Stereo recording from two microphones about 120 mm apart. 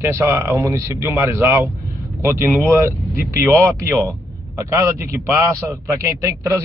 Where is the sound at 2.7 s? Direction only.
25° right (ahead or behind).